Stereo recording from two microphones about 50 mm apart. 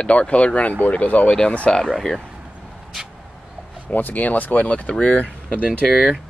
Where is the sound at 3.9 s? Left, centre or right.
Left.